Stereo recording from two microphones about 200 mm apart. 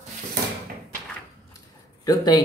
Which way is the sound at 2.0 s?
20° left (ahead or behind).